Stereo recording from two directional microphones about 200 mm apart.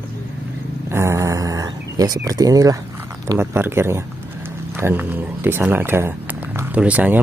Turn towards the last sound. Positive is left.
turn(degrees=-5)  # may be behind; listen again after turning